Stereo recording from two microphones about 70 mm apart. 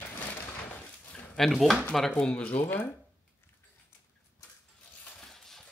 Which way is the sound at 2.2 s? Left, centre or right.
Centre.